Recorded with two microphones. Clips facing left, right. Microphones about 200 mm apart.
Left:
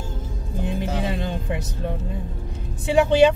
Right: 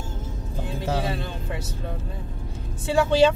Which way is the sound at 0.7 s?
20° left (ahead or behind).